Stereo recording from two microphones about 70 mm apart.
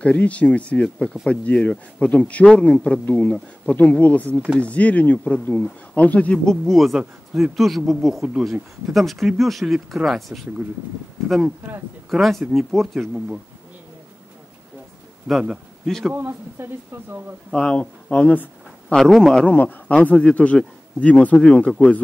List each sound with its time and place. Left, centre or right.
0.0 s speech: centre
15.2 s speech: centre
16.1 s speech: right
17.5 s speech: centre
18.9 s speech: centre
19.4 s speech: left